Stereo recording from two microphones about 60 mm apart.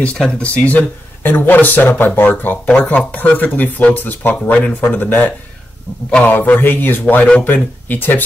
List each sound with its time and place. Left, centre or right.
0.3 s speech: centre